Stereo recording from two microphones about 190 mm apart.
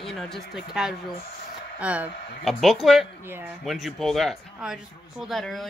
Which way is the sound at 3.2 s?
10° right (ahead or behind).